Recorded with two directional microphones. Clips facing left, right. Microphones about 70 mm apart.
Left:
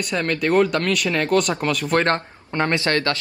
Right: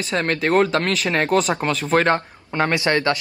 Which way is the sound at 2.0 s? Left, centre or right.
Centre.